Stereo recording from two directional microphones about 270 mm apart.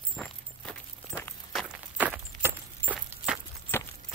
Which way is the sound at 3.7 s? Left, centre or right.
Centre.